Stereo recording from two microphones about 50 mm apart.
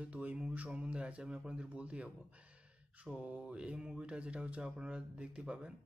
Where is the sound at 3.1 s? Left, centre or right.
Right.